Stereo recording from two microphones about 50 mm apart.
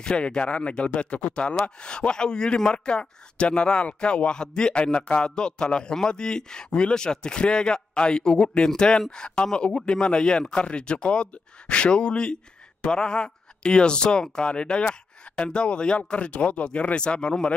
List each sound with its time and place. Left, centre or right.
0.0 s speech: centre